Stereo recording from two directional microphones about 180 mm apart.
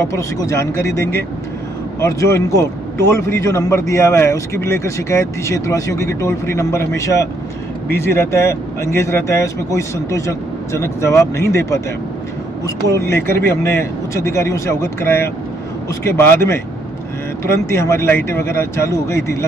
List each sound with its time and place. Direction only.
0.1 s a man's voice: 15° left (ahead or behind)
17.7 s a man's voice: 15° left (ahead or behind)